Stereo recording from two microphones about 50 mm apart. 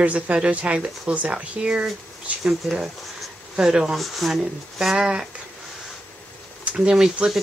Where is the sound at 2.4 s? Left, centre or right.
Centre.